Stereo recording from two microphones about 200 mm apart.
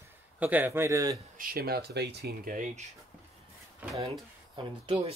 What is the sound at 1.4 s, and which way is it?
Speech, 45° right (ahead or behind).